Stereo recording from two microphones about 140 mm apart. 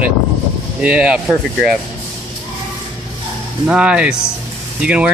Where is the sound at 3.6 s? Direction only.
5° right (ahead or behind).